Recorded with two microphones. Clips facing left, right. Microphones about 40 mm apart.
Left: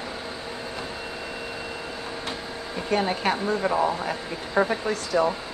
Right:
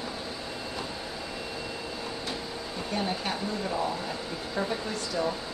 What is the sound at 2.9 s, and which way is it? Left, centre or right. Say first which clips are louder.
Speech: left 8 dB; left.